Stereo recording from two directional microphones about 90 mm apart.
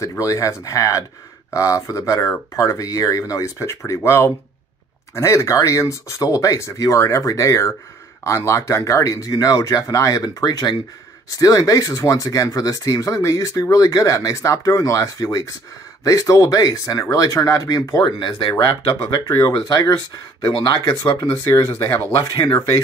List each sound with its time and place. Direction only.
0.2 s speech: 35° left (ahead or behind); by 10.8 s 50° left (ahead or behind)
11.2 s speech: 40° left (ahead or behind)
18.2 s speech: 60° left (ahead or behind); by 18.9 s 80° left
19.0 s speech: 55° left (ahead or behind)
20.4 s speech: 65° left (ahead or behind)
21.5 s speech: 30° left (ahead or behind)